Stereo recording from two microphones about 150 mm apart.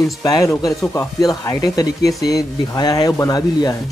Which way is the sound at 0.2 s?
25° left (ahead or behind).